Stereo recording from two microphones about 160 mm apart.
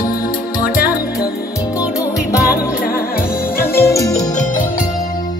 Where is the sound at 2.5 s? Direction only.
65° left (ahead or behind).